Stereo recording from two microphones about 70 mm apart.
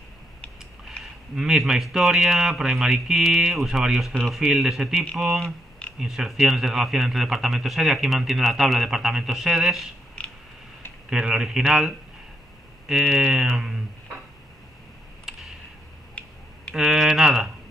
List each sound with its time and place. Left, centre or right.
0.8 s speech: centre
4.1 s speech: centre
4.4 s a man's voice: centre
10.2 s a sound: centre
11.1 s a man's voice: centre
15.3 s a sound: centre
16.2 s finger snapping: centre
16.7 s speech: centre